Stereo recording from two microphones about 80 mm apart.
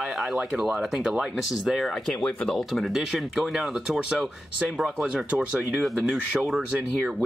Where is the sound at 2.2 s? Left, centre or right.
Centre.